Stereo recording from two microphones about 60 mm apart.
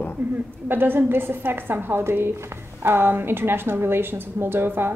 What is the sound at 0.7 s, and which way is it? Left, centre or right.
A woman's voice, right.